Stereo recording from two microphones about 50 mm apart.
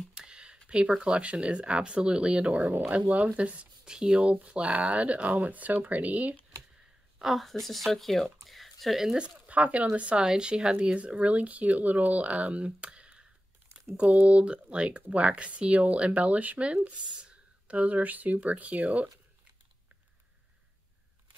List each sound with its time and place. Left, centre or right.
0.2 s a sound: centre
0.7 s speech: centre
7.2 s a woman's voice: centre
9.0 s speech: centre
9.5 s speech: right